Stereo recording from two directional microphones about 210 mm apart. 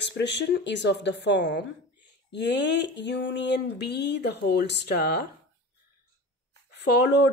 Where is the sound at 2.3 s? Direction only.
55° left (ahead or behind).